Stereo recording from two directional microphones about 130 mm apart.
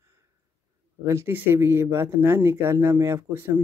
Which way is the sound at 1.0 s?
20° right (ahead or behind).